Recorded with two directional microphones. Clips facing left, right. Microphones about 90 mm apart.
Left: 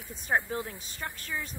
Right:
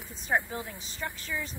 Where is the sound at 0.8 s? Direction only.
50° left (ahead or behind).